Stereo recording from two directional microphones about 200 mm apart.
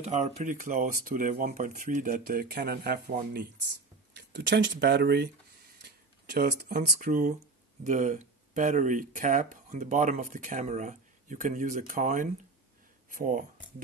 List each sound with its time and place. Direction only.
0.0 s speech: 35° right (ahead or behind); by 5.3 s 55° right (ahead or behind)
5.8 s a sound: 55° right (ahead or behind)
7.0 s speech: 40° right (ahead or behind)